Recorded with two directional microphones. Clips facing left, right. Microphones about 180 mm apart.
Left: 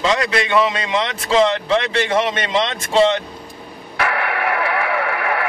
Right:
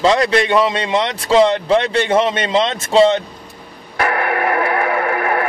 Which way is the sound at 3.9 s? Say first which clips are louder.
Right 3 dB; 45° right (ahead or behind).